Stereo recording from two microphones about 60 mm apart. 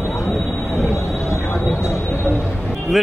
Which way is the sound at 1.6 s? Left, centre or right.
Left.